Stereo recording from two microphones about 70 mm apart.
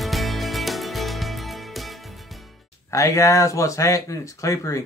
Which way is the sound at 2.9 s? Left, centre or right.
Left.